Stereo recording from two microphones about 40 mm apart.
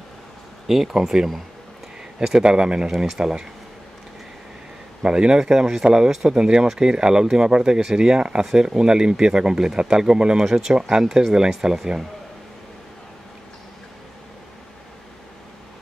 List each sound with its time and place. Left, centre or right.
0.7 s speech: centre
5.0 s speech: right